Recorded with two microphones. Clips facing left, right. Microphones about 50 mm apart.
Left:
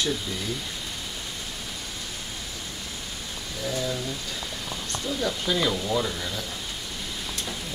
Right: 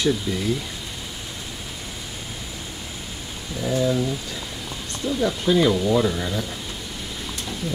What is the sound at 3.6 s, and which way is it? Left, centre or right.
Speech, centre.